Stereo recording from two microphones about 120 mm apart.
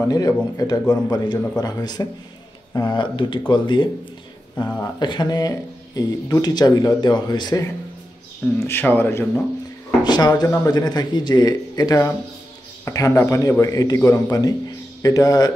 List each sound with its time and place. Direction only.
0.1 s speech: 30° left (ahead or behind)
8.5 s a man's voice: 20° left (ahead or behind)
10.0 s a man's voice: 35° left (ahead or behind)